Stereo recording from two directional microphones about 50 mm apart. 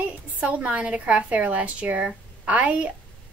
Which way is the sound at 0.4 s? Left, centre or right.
Right.